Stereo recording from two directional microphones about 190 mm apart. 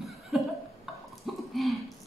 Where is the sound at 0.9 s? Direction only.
Centre (ahead or behind).